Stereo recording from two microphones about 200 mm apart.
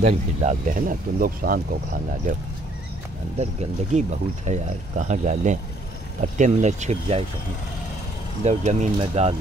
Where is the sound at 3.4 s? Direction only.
35° right (ahead or behind).